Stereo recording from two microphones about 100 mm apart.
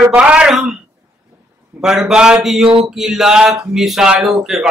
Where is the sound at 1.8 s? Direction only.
5° right (ahead or behind).